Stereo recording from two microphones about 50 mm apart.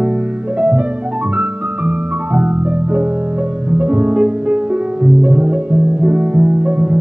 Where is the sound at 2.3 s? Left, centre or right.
Right.